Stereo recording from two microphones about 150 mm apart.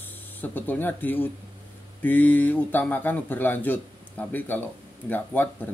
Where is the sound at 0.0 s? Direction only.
15° left (ahead or behind).